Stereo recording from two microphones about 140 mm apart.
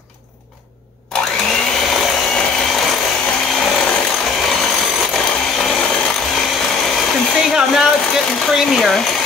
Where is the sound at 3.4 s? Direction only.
5° left (ahead or behind).